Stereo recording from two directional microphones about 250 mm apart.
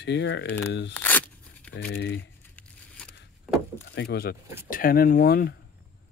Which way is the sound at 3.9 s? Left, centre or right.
Left.